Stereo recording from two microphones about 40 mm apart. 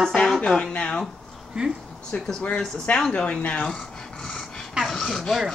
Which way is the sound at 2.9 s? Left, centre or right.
Left.